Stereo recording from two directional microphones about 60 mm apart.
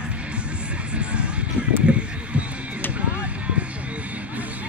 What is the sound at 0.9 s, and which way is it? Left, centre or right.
Music, centre.